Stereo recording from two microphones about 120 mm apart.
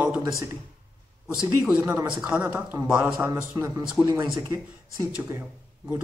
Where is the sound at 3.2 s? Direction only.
25° right (ahead or behind).